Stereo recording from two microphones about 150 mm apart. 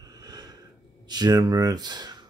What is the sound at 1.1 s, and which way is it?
Speech, 25° right (ahead or behind).